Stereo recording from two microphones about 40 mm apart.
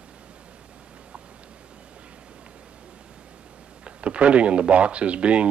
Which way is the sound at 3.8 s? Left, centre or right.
Right.